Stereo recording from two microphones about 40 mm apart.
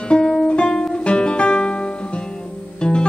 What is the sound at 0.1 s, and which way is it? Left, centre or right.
Guitar, centre.